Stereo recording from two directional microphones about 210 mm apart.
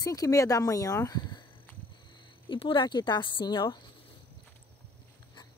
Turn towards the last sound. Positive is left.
turn(degrees=20)  # may be behind; listen again after turning